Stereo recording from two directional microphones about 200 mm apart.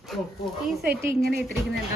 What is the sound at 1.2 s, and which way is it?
Speech, 50° right (ahead or behind).